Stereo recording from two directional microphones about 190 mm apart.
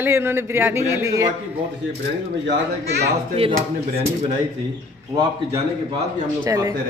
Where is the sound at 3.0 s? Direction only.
30° right (ahead or behind).